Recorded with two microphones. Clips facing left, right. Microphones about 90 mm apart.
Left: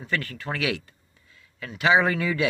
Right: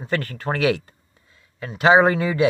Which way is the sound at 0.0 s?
40° right (ahead or behind).